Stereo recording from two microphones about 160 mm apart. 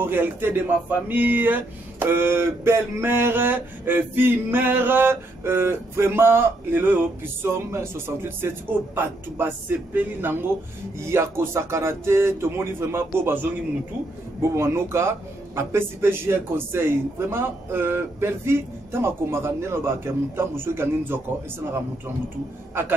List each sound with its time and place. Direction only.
0.0 s speech: 15° right (ahead or behind)
14.5 s speech: 15° right (ahead or behind)